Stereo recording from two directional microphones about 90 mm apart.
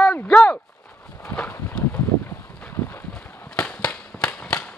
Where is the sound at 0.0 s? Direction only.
15° left (ahead or behind).